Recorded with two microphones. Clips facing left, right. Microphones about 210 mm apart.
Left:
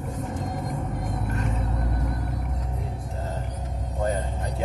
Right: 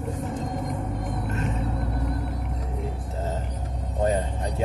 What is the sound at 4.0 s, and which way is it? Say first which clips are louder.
Vehicle: right 3 dB; 20° right (ahead or behind).